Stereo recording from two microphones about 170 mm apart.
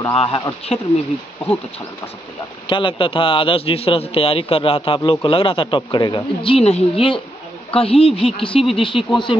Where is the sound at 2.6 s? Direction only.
30° left (ahead or behind).